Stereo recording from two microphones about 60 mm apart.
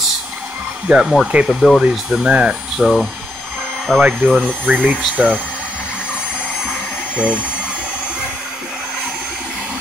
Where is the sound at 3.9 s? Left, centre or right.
Centre.